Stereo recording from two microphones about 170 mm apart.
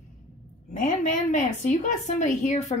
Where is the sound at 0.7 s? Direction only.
50° left (ahead or behind).